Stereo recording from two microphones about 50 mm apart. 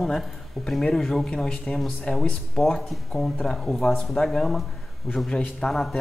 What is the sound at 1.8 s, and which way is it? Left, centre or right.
Speech, centre.